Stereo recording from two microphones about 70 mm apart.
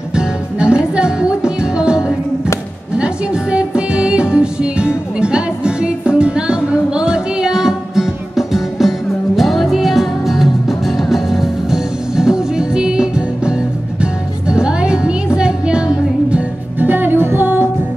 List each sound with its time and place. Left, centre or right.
0.1 s music: centre
3.5 s music: centre; by 17.6 s right